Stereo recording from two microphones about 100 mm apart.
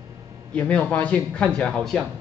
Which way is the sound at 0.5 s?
15° left (ahead or behind).